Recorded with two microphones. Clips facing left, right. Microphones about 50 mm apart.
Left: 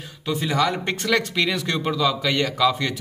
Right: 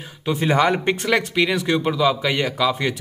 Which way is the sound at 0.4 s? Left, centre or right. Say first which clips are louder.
Right 4 dB; right.